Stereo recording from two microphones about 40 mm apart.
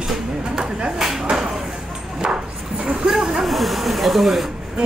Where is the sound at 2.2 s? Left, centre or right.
Centre.